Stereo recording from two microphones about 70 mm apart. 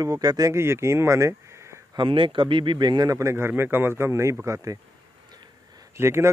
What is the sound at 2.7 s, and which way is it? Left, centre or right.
Speech, right.